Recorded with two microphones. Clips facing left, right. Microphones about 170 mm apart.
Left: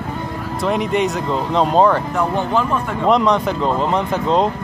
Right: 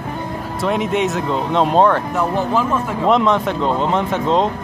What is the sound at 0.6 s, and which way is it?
Speech, centre (ahead or behind).